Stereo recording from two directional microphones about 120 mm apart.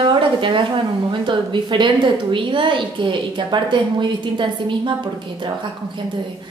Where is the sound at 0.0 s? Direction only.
45° right (ahead or behind).